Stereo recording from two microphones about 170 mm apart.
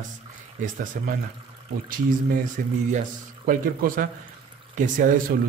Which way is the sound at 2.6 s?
60° right (ahead or behind).